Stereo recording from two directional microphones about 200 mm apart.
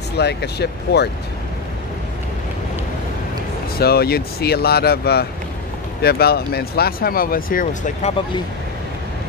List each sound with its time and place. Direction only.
0.2 s speech: 55° left (ahead or behind)
3.8 s speech: 50° left (ahead or behind)